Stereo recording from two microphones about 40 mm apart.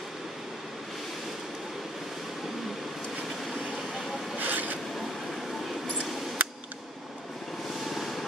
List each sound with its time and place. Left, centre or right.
4.4 s zipper: right
6.4 s a sound: right
7.9 s vehicle: centre